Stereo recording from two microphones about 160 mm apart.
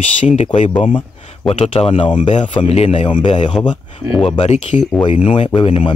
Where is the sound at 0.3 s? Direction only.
45° left (ahead or behind).